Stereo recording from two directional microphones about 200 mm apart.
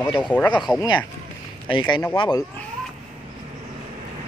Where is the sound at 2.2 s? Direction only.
20° left (ahead or behind).